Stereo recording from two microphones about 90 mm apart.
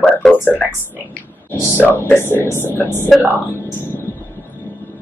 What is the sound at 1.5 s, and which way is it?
Speech, 25° left (ahead or behind).